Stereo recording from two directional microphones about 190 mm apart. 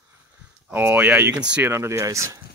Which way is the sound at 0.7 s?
10° right (ahead or behind).